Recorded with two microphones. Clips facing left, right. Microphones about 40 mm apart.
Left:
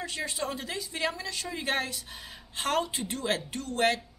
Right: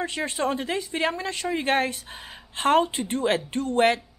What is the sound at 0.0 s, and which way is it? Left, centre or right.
A woman's voice, right.